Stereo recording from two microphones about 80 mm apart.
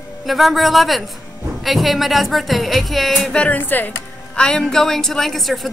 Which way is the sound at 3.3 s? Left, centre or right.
Centre.